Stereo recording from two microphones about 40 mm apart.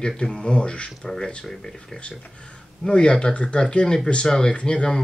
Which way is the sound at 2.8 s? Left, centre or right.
Left.